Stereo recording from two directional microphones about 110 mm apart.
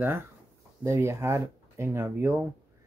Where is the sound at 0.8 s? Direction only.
25° right (ahead or behind).